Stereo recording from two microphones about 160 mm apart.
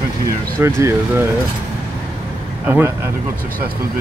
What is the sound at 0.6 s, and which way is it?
Speech, 15° right (ahead or behind).